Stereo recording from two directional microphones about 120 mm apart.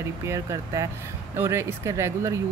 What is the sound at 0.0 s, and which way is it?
Speech, 25° right (ahead or behind).